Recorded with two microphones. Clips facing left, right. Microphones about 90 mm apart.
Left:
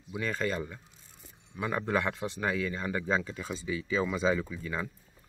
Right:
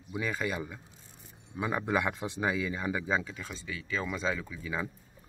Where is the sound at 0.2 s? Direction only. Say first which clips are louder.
Left 1 dB; 10° right (ahead or behind).